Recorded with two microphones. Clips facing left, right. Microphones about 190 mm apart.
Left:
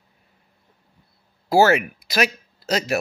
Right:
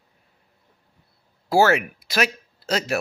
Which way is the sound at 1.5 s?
5° left (ahead or behind).